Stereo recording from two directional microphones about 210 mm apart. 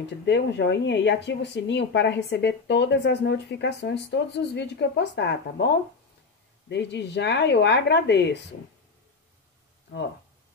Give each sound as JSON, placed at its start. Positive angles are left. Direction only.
{"t": 0.0, "sound": "speech", "side_deg": 55}
{"t": 6.7, "sound": "speech", "side_deg": 55}